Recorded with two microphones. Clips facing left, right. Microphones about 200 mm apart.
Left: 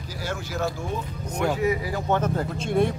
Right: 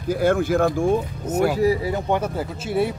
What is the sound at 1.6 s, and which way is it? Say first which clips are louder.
Speech: right 5 dB; 30° right (ahead or behind).